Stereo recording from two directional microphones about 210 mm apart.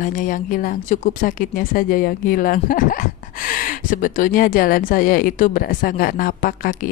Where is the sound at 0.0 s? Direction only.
40° left (ahead or behind).